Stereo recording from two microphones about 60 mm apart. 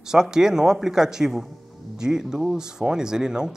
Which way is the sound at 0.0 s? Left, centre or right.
Centre.